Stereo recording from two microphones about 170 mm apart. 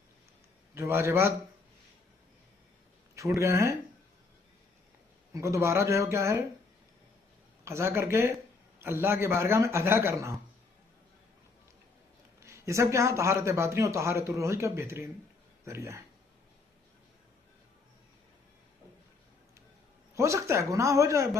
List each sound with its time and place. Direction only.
0.7 s a man's voice: 15° right (ahead or behind)
3.3 s a man's voice: 15° right (ahead or behind)
5.3 s a man's voice: 15° right (ahead or behind)
7.6 s a man's voice: 15° right (ahead or behind)
12.4 s a man's voice: 15° right (ahead or behind)
20.2 s a man's voice: 15° right (ahead or behind)